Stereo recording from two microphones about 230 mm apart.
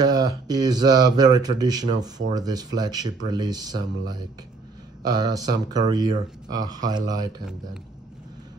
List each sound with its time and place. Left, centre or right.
0.0 s speech: centre